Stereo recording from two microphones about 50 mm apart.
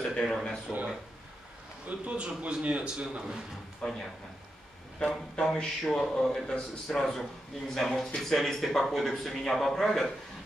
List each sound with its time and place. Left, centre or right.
0.1 s a man's voice: centre
1.9 s a man's voice: right
3.8 s a man's voice: centre